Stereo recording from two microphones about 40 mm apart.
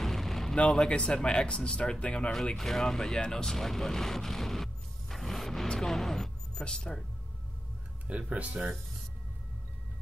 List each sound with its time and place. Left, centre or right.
0.0 s a sound: centre
0.7 s speech: left
2.5 s speech: centre
3.2 s music: centre
6.9 s speech: centre
8.1 s speech: right